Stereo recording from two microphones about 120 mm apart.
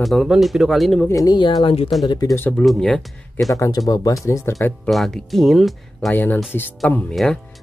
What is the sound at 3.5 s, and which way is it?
Speech, 25° left (ahead or behind).